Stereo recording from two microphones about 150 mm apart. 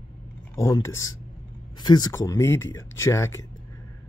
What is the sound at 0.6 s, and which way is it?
Speech, 20° left (ahead or behind).